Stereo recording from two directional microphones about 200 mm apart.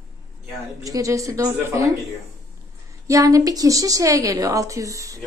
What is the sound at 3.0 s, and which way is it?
A woman's voice, 15° right (ahead or behind).